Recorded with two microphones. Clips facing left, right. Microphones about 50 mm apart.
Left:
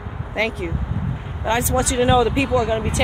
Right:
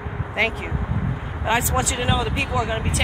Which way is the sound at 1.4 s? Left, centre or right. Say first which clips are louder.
Left 2 dB; centre.